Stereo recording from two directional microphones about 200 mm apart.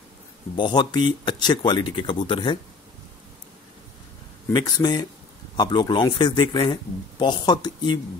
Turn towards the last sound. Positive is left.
turn(degrees=20)  # may be behind; listen again after turning